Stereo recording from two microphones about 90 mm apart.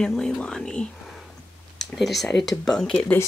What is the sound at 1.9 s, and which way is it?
Speech, centre (ahead or behind).